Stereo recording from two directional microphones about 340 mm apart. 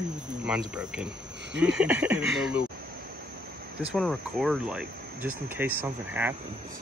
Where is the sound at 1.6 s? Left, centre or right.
Centre.